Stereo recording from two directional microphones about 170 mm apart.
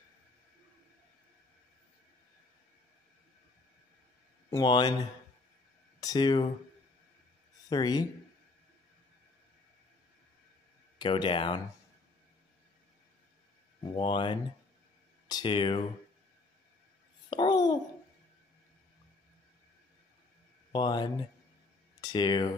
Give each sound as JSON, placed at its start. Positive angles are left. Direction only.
{"t": 4.5, "sound": "speech", "side_deg": 25}
{"t": 5.9, "sound": "speech", "side_deg": 25}
{"t": 7.7, "sound": "speech", "side_deg": 25}
{"t": 11.0, "sound": "speech", "side_deg": 30}
{"t": 13.9, "sound": "speech", "side_deg": 30}
{"t": 17.3, "sound": "speech", "side_deg": 25}
{"t": 20.7, "sound": "speech", "side_deg": 25}